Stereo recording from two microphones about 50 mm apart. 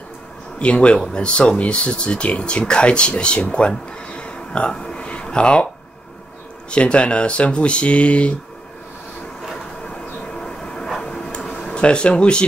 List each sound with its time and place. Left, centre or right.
0.6 s speech: left
6.7 s speech: left
10.4 s train: centre
11.0 s a sound: centre